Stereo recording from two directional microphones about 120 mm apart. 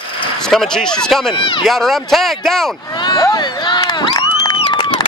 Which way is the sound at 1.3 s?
45° left (ahead or behind).